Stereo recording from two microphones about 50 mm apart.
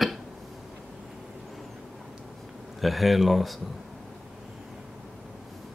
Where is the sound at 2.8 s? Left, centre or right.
Centre.